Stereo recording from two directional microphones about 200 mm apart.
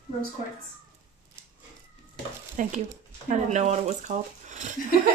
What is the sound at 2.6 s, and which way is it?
Speech, 40° right (ahead or behind).